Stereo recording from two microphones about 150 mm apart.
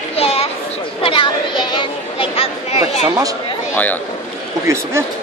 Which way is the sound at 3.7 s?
10° left (ahead or behind).